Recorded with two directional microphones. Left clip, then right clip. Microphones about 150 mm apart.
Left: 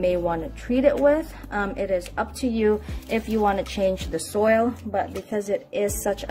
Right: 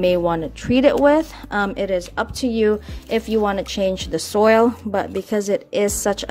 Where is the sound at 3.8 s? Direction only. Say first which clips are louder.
Right 3 dB; 40° right (ahead or behind).